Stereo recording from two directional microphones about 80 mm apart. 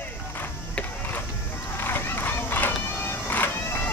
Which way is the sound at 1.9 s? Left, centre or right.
Left.